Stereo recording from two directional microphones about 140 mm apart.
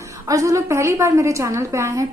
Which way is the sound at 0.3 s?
25° right (ahead or behind).